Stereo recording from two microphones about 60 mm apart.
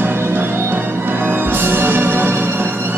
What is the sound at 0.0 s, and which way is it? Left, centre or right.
Music, right.